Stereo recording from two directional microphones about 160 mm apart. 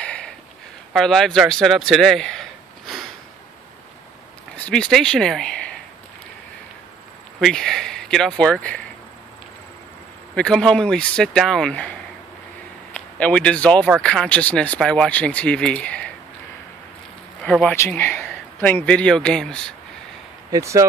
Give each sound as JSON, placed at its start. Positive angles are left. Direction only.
{"t": 0.0, "sound": "a sound", "side_deg": 5}
{"t": 0.9, "sound": "speech", "side_deg": 0}
{"t": 4.6, "sound": "speech", "side_deg": 5}
{"t": 7.3, "sound": "speech", "side_deg": 5}
{"t": 10.3, "sound": "speech", "side_deg": 5}
{"t": 17.4, "sound": "speech", "side_deg": 5}
{"t": 20.5, "sound": "speech", "side_deg": -20}